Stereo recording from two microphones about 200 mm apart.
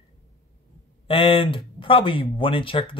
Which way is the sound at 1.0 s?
25° left (ahead or behind).